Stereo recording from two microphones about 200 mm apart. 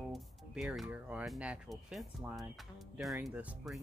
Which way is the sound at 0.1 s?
Centre (ahead or behind).